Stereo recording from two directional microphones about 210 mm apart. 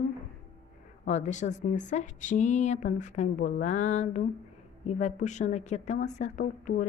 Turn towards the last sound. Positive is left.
turn(degrees=40)  # may be behind; listen again after turning